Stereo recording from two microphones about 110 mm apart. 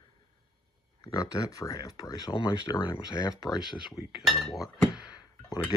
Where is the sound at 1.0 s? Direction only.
30° left (ahead or behind).